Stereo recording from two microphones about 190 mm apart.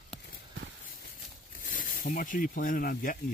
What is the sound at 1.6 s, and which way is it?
Speech, 45° left (ahead or behind).